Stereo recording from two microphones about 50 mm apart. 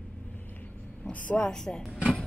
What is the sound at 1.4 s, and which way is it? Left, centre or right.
Speech, centre.